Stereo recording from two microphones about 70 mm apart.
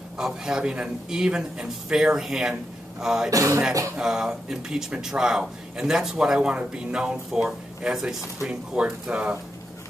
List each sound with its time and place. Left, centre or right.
0.2 s speech: centre
3.3 s speech: right
4.0 s speech: centre